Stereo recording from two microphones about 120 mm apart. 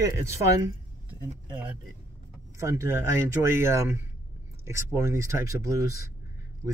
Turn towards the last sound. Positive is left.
turn(degrees=-25)  # may be behind; listen again after turning